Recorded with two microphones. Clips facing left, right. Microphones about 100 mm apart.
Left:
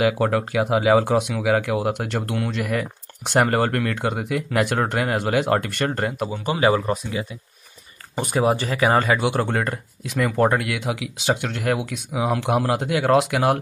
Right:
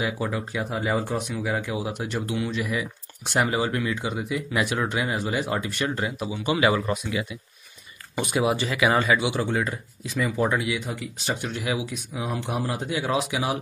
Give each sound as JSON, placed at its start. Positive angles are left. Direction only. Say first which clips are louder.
{"t": 0.0, "sound": "speech", "louder": "left 8 dB", "side_deg": 70}
{"t": 6.4, "sound": "speech", "louder": "left 2 dB", "side_deg": 35}